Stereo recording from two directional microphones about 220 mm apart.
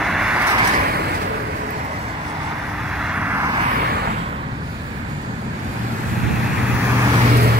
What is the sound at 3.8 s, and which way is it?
Vehicle, 45° right (ahead or behind).